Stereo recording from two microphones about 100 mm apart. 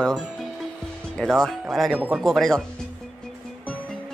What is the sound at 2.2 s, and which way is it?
Speech, 5° left (ahead or behind).